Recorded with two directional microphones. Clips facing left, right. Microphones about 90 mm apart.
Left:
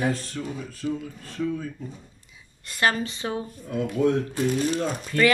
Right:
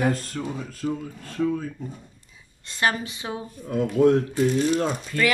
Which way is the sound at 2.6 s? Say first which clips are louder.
Left 1 dB; 20° right (ahead or behind).